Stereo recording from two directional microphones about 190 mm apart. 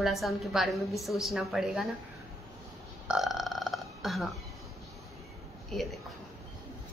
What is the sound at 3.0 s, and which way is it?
Burping, centre (ahead or behind).